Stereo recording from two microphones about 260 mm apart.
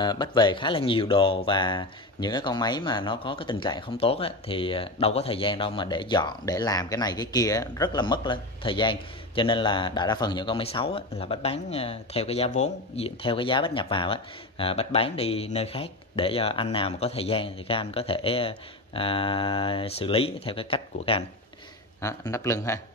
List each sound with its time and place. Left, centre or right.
0.0 s speech: centre